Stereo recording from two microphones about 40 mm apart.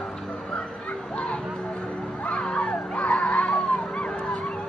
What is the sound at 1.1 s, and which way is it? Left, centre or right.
Children playing, left.